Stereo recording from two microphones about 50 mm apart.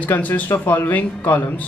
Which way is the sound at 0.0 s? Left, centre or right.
Left.